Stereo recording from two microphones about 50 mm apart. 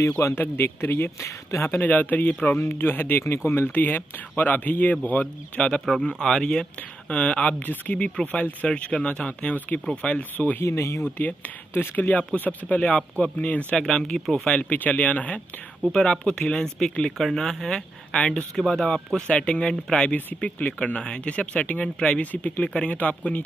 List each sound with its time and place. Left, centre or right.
0.0 s a man's voice: left
0.4 s speech: left
1.8 s speech: left
6.0 s speech: centre; by 10.6 s left
10.6 s speech: left
11.7 s speech: left
12.0 s speech: left
13.7 s speech: centre
14.6 s speech: left
15.9 s speech: centre
18.6 s speech: centre
19.1 s speech: centre